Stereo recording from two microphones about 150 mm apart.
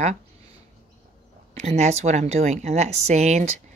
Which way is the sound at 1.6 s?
45° right (ahead or behind).